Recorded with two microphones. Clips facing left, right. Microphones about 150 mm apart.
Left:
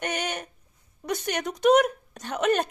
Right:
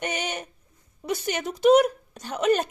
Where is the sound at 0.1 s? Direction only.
50° left (ahead or behind).